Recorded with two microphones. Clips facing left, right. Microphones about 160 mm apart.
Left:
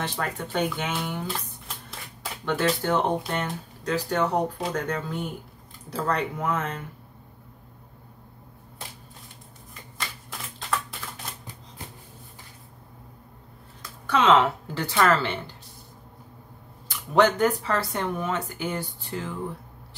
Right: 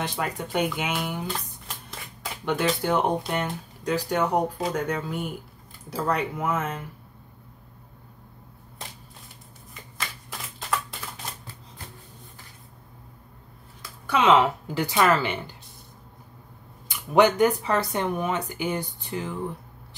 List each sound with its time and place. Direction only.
0.0 s speech: 15° right (ahead or behind)
1.3 s shuffling cards: centre (ahead or behind)
2.8 s speech: 10° right (ahead or behind)
9.9 s shuffling cards: centre (ahead or behind)
13.8 s speech: 10° right (ahead or behind)
16.8 s speech: 15° right (ahead or behind)